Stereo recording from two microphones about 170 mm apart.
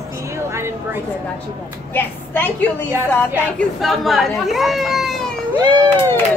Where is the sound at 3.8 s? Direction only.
Centre (ahead or behind).